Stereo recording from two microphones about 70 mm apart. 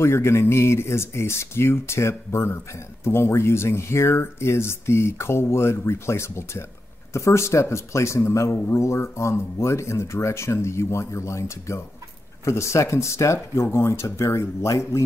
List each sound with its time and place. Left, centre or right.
0.0 s a man's voice: left